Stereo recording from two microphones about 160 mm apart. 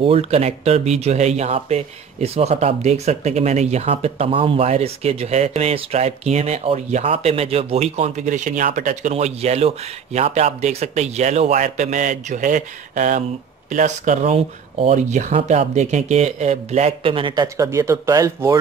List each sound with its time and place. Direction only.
0.0 s speech: 40° right (ahead or behind); by 18.6 s 20° right (ahead or behind)